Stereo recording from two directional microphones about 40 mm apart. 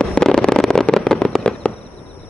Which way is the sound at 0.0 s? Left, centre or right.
Centre.